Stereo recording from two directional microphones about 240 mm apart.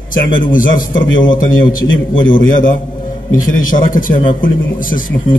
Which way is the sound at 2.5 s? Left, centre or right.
Left.